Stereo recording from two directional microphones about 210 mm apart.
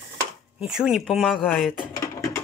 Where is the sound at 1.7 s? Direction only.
20° left (ahead or behind).